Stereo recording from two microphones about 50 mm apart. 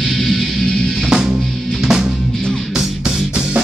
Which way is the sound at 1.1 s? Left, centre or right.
Centre.